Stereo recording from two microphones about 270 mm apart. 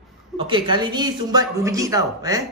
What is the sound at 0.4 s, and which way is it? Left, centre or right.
Speech, centre.